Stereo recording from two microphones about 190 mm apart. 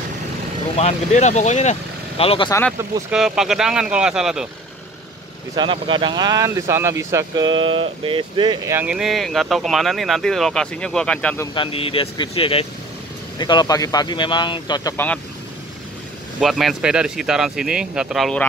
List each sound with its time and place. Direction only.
0.7 s speech: 35° left (ahead or behind)
3.1 s speech: 5° right (ahead or behind)
5.6 s speech: 25° right (ahead or behind)
8.7 s speech: 5° right (ahead or behind)
11.5 s speech: 30° left (ahead or behind)
16.3 s speech: centre (ahead or behind)